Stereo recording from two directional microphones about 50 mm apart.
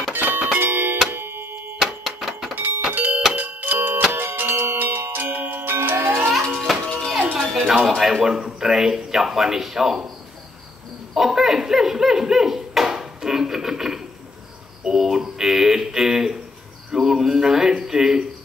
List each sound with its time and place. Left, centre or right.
0.1 s doorbell: right
0.6 s a sound: right
1.1 s music: right
1.8 s a sound: centre
2.5 s doorbell: right
3.3 s a sound: right
4.1 s music: right
5.2 s music: right
6.3 s music: centre
8.0 s a man's voice: centre
11.1 s speech: centre